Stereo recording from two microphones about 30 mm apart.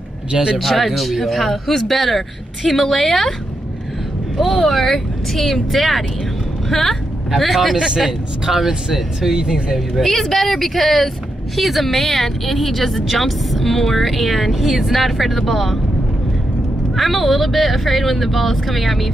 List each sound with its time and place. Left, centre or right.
0.3 s a man's voice: right
0.6 s a man's voice: centre
4.4 s a man's voice: centre
7.7 s a man's voice: right
8.0 s speech: centre
10.2 s a man's voice: centre
16.9 s a man's voice: centre